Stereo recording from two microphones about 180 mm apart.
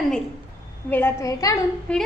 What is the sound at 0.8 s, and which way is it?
Speech, 10° left (ahead or behind).